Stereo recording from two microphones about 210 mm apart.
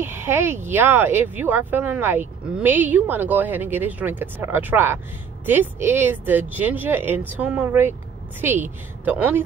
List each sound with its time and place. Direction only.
0.0 s speech: 10° right (ahead or behind)